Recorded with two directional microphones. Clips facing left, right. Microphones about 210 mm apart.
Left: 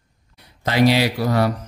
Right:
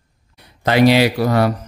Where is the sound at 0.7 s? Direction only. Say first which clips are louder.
Right 4 dB; 65° right (ahead or behind).